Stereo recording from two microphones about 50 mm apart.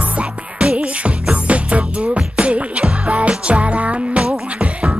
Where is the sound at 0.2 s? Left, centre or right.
Centre.